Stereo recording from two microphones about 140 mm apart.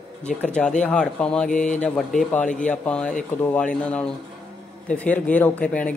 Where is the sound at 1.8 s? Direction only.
5° left (ahead or behind).